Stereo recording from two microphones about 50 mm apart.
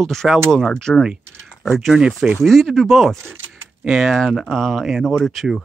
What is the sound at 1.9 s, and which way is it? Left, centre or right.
Speech, centre.